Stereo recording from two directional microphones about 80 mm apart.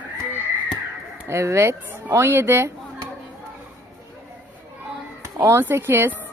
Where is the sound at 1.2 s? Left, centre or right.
Right.